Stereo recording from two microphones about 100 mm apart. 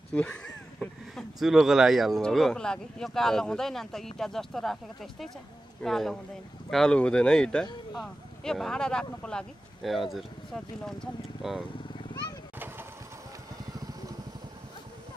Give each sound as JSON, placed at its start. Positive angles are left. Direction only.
{"t": 0.1, "sound": "speech", "side_deg": 10}
{"t": 5.8, "sound": "speech", "side_deg": 5}
{"t": 12.5, "sound": "a sound", "side_deg": -20}